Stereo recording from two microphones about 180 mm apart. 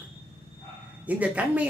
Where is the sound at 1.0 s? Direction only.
10° right (ahead or behind).